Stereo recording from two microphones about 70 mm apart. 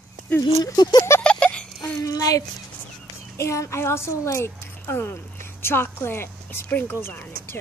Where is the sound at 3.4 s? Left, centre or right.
Left.